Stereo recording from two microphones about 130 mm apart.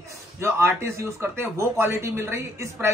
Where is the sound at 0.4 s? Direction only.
20° right (ahead or behind).